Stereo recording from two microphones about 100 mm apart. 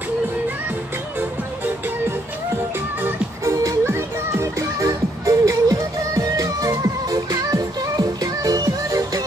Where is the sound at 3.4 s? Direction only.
35° right (ahead or behind).